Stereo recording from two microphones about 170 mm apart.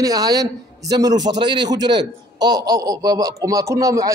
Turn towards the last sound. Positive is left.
turn(degrees=-20)  # may be behind; listen again after turning